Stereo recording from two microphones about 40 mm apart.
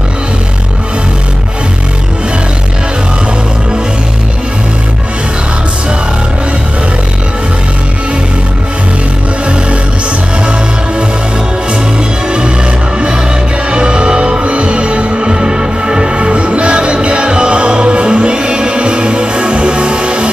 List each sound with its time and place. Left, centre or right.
13.7 s music: right